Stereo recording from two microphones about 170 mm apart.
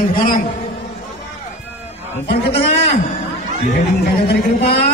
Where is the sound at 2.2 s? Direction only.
70° left (ahead or behind).